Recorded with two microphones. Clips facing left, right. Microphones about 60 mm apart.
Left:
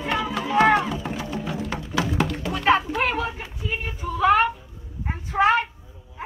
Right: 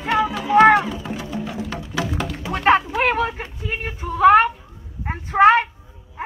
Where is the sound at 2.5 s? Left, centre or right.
Right.